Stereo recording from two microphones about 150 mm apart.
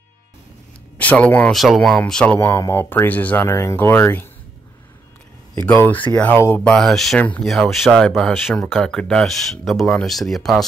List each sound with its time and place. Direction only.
0.9 s speech: 10° left (ahead or behind)
5.7 s speech: 10° left (ahead or behind)